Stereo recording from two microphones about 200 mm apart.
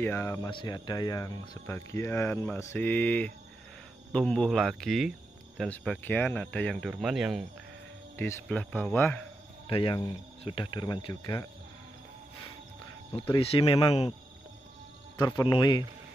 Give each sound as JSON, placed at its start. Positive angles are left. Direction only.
{"t": 0.0, "sound": "speech", "side_deg": 10}
{"t": 8.2, "sound": "speech", "side_deg": 10}
{"t": 9.7, "sound": "speech", "side_deg": 25}
{"t": 13.1, "sound": "speech", "side_deg": 30}
{"t": 15.1, "sound": "speech", "side_deg": 20}